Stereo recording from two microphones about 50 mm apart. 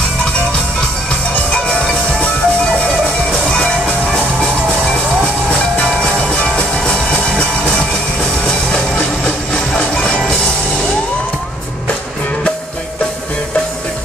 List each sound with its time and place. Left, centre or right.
1.3 s music: left
6.4 s music: centre
8.5 s music: centre